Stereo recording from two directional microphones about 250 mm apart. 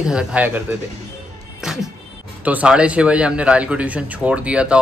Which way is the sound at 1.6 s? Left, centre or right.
Centre.